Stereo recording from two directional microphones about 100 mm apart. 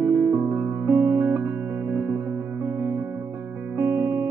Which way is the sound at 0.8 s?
20° right (ahead or behind).